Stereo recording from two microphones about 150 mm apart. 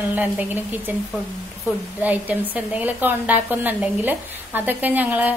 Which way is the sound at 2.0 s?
10° right (ahead or behind).